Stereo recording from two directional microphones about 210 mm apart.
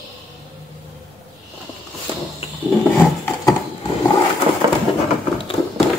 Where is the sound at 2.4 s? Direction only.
25° left (ahead or behind).